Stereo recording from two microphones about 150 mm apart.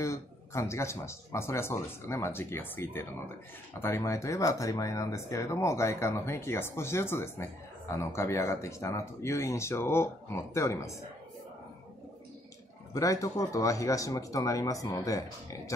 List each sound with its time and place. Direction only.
0.0 s speech: 20° left (ahead or behind)
12.9 s speech: 20° left (ahead or behind)